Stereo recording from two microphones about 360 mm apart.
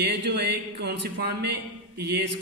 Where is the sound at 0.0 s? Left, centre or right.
Right.